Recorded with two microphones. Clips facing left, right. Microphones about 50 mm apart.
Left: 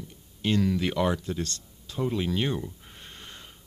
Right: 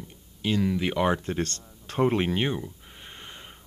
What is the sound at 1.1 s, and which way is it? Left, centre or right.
Speech, right.